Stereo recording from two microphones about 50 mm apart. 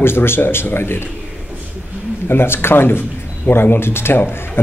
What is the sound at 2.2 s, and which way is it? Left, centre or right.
A man's voice, left.